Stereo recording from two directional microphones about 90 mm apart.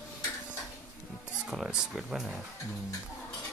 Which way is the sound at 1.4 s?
5° right (ahead or behind).